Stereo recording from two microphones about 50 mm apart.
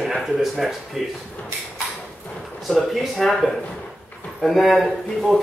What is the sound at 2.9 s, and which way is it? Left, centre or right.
Speech, centre.